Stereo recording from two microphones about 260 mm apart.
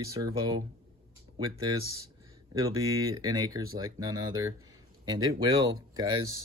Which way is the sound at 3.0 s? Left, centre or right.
Centre.